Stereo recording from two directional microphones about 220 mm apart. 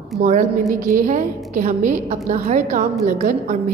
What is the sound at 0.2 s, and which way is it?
A woman's voice, 35° right (ahead or behind).